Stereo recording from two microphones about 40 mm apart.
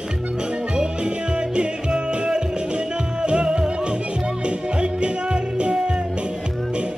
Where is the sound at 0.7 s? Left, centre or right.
Right.